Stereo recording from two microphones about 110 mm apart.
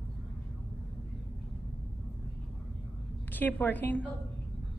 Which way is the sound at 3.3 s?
15° left (ahead or behind).